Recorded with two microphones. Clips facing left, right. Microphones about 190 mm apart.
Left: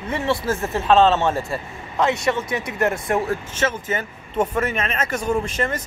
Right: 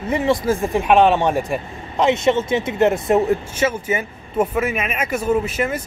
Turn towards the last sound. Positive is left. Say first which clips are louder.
# right 3 dB
turn(degrees=-10)  # may be behind; listen again after turning